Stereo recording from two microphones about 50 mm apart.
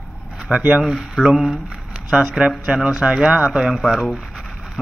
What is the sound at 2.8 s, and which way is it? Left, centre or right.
Speech, centre.